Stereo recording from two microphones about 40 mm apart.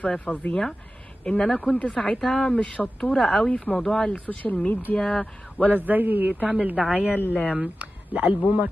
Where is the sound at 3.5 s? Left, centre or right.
Left.